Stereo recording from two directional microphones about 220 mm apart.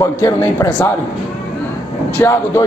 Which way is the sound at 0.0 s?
15° left (ahead or behind).